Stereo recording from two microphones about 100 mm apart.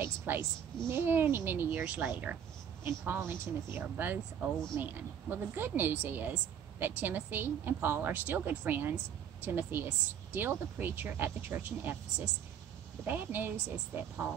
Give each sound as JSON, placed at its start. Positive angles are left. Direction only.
{"t": 0.0, "sound": "speech", "side_deg": -20}
{"t": 13.0, "sound": "speech", "side_deg": -20}